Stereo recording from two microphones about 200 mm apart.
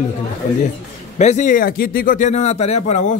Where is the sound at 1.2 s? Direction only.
35° left (ahead or behind).